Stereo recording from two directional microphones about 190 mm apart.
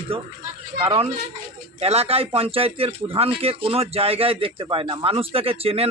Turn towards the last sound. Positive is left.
turn(degrees=-30)  # may be behind; listen again after turning